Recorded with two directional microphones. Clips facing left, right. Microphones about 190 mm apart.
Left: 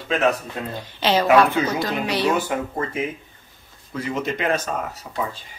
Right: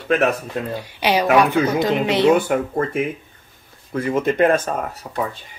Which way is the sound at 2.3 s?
55° right (ahead or behind).